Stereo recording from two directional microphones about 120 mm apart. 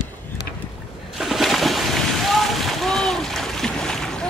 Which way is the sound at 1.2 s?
Centre (ahead or behind).